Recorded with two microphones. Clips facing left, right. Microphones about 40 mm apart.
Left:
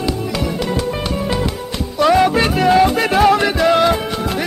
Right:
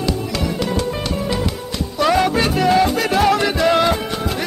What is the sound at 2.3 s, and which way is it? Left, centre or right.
Music, left.